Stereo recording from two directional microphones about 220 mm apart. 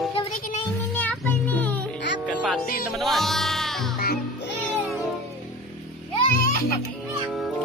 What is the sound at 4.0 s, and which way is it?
Music, 50° left (ahead or behind).